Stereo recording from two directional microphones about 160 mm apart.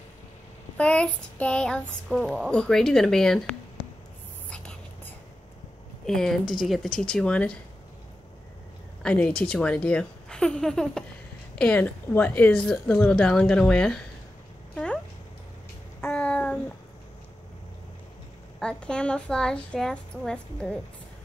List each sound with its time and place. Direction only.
0.7 s child singing: 5° left (ahead or behind)
4.5 s whispering: 5° left (ahead or behind)
6.0 s child singing: centre (ahead or behind)
9.0 s child singing: 5° left (ahead or behind)
11.5 s a woman's voice: 5° left (ahead or behind)
16.0 s child singing: 5° left (ahead or behind)
18.6 s child singing: 5° left (ahead or behind)